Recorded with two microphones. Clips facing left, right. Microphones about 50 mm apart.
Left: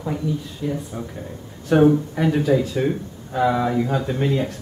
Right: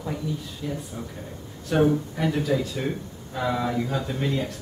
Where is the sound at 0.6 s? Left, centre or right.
Centre.